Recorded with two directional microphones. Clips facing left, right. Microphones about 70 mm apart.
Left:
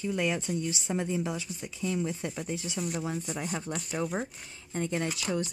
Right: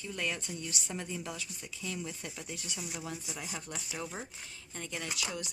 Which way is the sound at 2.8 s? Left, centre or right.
Centre.